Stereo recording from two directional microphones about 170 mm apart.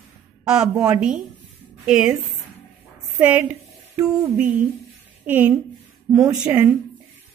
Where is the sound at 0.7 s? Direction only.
15° right (ahead or behind).